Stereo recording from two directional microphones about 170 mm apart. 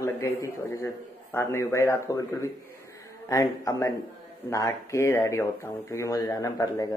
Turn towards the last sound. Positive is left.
turn(degrees=20)  # may be behind; listen again after turning